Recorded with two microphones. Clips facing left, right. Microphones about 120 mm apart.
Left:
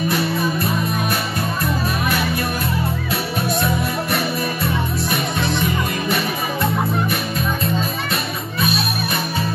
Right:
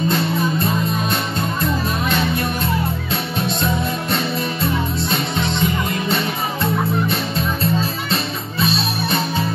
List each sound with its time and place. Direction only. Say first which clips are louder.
0.1 s music: right 1 dB; 20° right (ahead or behind)